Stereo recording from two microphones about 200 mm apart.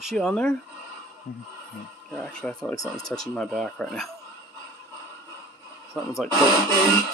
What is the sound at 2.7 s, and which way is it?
Speech, 15° left (ahead or behind).